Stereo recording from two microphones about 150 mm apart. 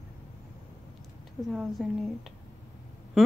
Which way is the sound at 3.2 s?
5° right (ahead or behind).